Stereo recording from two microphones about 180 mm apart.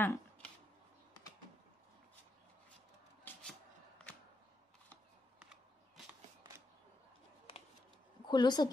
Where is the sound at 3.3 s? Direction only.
10° left (ahead or behind).